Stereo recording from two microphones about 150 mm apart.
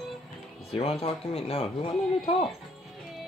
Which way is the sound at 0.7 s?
40° left (ahead or behind).